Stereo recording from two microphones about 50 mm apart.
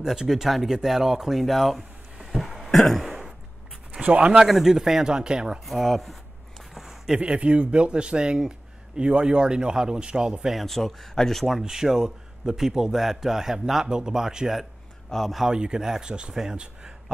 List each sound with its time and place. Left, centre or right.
0.0 s speech: centre
3.1 s a sound: centre
4.0 s a man's voice: right
5.7 s speech: centre
6.7 s a sound: centre
7.2 s speech: right
10.6 s speech: centre
11.4 s a man's voice: centre
14.6 s a sound: centre
15.4 s a man's voice: centre